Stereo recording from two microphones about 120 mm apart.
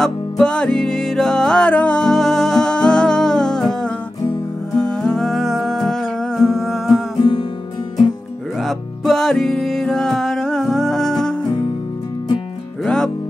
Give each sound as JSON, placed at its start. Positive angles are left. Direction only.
{"t": 0.0, "sound": "music", "side_deg": 5}
{"t": 4.7, "sound": "humming", "side_deg": 5}
{"t": 7.2, "sound": "music", "side_deg": 40}
{"t": 8.5, "sound": "music", "side_deg": 0}
{"t": 12.8, "sound": "music", "side_deg": 5}